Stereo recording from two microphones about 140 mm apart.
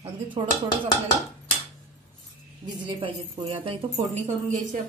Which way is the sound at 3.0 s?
40° right (ahead or behind).